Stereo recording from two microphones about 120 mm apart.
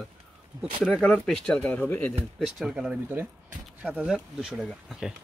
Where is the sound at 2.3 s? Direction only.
5° right (ahead or behind).